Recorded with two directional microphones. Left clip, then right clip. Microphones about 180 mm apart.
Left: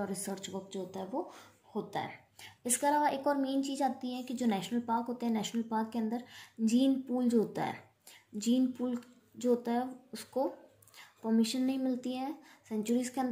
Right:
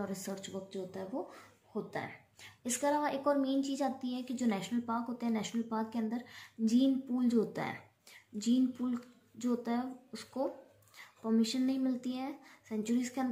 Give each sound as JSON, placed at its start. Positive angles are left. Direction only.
{"t": 0.0, "sound": "speech", "side_deg": 15}